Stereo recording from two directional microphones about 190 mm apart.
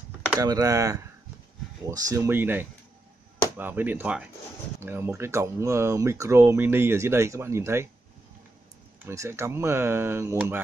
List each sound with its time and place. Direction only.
0.4 s speech: 15° right (ahead or behind)
9.0 s speech: 15° right (ahead or behind)